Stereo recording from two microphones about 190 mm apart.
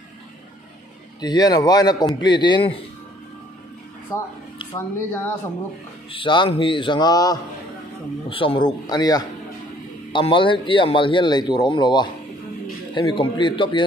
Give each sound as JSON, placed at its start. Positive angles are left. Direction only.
{"t": 1.2, "sound": "speech", "side_deg": 20}
{"t": 4.1, "sound": "speech", "side_deg": 15}
{"t": 6.1, "sound": "speech", "side_deg": 25}